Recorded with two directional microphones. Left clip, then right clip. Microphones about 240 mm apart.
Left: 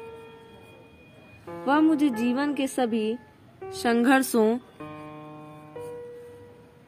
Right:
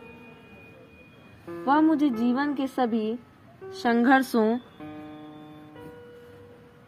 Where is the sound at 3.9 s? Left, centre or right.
Left.